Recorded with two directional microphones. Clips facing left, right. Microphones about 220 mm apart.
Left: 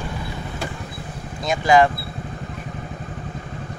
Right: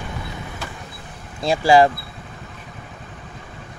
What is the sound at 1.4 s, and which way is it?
Speech, 30° right (ahead or behind).